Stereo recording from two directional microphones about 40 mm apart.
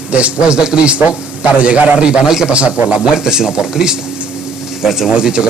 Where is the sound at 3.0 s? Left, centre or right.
Centre.